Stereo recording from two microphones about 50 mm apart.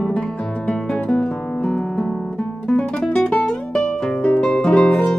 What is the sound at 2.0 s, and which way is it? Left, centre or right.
Guitar, centre.